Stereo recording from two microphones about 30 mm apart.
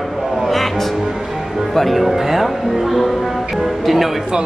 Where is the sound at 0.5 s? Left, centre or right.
Centre.